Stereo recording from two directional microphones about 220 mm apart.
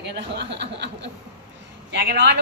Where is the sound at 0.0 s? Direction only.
50° right (ahead or behind).